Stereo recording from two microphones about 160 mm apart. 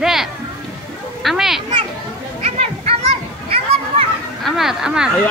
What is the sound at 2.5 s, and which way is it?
Children playing, 40° right (ahead or behind).